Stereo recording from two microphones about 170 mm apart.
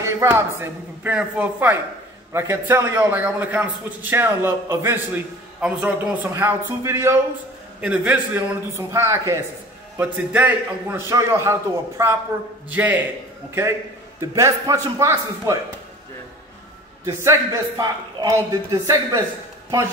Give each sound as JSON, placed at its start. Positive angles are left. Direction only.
{"t": 0.0, "sound": "a man's voice", "side_deg": -15}
{"t": 14.3, "sound": "a man's voice", "side_deg": -15}
{"t": 17.0, "sound": "a man's voice", "side_deg": -15}